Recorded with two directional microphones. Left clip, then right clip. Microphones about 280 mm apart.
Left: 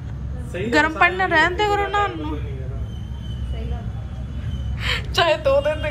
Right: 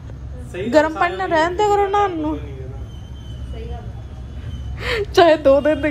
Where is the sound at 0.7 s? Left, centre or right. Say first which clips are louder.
Right 1 dB; centre.